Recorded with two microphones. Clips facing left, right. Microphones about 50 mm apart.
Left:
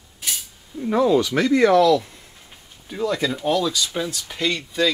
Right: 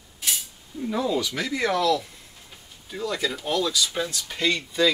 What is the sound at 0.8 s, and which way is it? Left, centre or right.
Speech, left.